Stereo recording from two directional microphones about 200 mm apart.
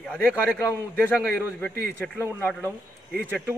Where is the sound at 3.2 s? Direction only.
10° right (ahead or behind).